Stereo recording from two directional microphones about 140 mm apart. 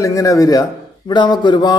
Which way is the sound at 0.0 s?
25° left (ahead or behind).